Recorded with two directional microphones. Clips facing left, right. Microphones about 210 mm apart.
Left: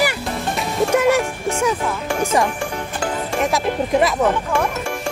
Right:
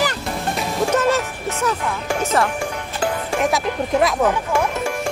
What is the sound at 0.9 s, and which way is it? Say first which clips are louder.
Music: left 4 dB; 10° left (ahead or behind).